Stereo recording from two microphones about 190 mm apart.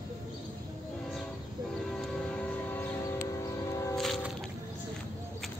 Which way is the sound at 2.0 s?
5° left (ahead or behind).